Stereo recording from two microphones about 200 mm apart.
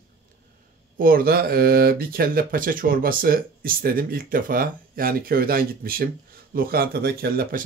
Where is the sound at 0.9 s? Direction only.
45° right (ahead or behind).